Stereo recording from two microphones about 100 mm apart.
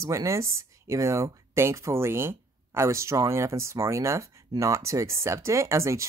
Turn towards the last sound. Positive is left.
turn(degrees=-30)  # may be behind; listen again after turning